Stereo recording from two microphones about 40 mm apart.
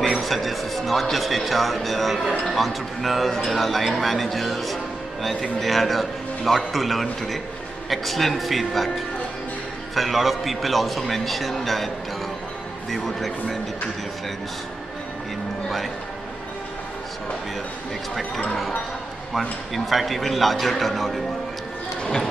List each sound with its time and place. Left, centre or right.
0.1 s a man's voice: centre
9.9 s a man's voice: centre
12.9 s a man's voice: centre
19.3 s a man's voice: centre
22.0 s speech: centre